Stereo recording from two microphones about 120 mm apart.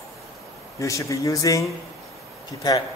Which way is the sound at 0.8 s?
25° left (ahead or behind).